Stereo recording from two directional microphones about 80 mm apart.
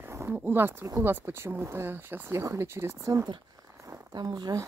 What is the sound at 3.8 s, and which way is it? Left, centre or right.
Speech, right.